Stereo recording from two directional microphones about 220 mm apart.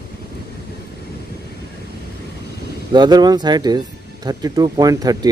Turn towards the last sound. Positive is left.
turn(degrees=-15)  # may be behind; listen again after turning